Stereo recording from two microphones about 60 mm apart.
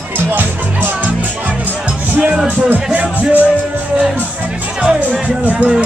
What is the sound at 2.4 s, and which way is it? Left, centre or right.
Speech, right.